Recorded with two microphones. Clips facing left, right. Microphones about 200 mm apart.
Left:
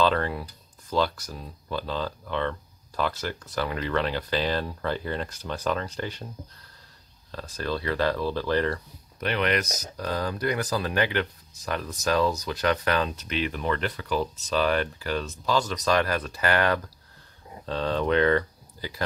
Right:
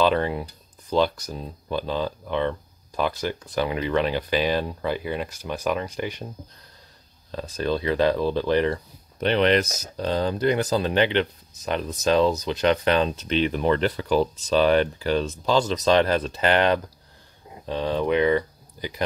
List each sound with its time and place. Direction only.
0.0 s speech: 15° right (ahead or behind)
7.2 s speech: 20° right (ahead or behind)